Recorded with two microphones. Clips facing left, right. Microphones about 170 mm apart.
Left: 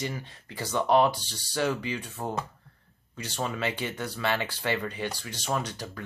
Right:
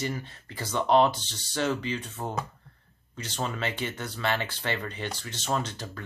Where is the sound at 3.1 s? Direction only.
10° left (ahead or behind).